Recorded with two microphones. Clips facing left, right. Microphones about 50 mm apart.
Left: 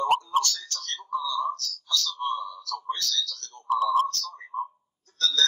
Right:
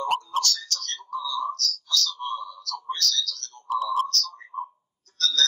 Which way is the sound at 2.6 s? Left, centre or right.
Left.